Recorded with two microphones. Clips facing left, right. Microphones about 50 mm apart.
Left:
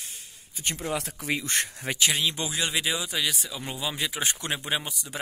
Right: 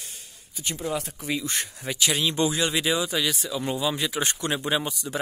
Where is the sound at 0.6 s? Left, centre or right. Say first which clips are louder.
Right 1 dB; left.